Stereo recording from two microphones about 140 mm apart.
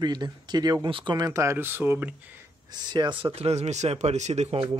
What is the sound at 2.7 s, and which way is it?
Speech, 30° right (ahead or behind).